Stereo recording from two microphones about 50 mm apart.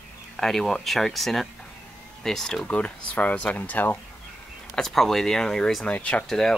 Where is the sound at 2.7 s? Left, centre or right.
Left.